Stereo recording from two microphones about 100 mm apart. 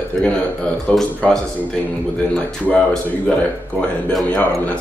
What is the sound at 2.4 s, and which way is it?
Speech, 10° left (ahead or behind).